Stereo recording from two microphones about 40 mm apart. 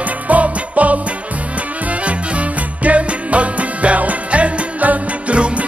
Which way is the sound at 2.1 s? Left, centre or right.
Right.